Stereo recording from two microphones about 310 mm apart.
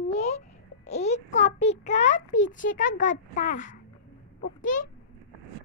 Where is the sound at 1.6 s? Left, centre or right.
Left.